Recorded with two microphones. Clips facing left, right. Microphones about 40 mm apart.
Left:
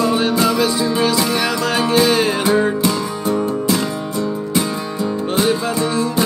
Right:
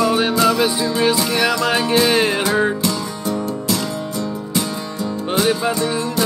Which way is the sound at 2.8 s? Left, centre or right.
Centre.